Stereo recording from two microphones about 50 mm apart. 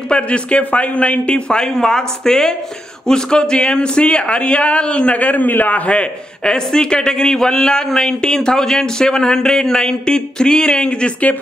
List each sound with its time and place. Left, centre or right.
0.1 s speech: left